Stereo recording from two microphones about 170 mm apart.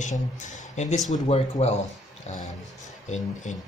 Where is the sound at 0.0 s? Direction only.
45° left (ahead or behind).